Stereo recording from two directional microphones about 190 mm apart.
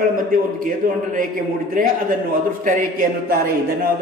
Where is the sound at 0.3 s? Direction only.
45° right (ahead or behind).